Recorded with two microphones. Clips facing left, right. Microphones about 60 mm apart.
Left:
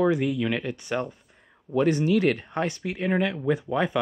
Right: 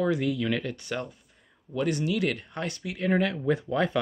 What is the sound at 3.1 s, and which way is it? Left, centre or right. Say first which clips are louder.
Speech: even; centre.